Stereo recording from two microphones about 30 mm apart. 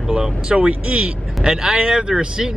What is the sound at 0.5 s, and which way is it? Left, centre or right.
Speech, right.